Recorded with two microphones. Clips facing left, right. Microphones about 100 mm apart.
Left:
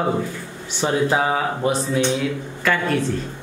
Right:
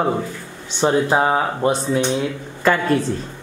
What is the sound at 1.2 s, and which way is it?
A woman's voice, 35° right (ahead or behind).